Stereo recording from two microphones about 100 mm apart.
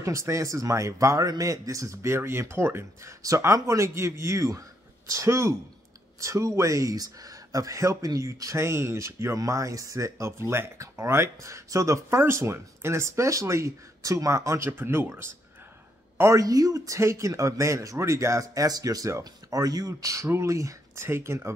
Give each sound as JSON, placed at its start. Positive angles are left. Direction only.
{"t": 0.0, "sound": "speech", "side_deg": -30}